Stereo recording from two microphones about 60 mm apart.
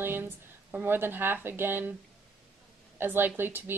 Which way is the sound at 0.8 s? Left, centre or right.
Right.